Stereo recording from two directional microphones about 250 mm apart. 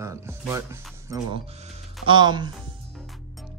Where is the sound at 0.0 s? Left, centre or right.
Centre.